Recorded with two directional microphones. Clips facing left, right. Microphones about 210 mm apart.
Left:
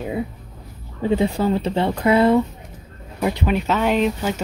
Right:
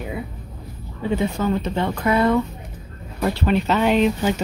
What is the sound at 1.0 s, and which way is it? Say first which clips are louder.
Speech: left 3 dB; 30° left (ahead or behind).